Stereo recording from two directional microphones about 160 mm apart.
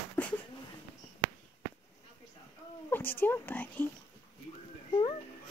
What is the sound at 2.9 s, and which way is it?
Speech, 15° left (ahead or behind).